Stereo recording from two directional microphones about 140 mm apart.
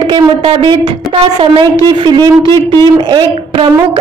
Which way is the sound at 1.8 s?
35° right (ahead or behind).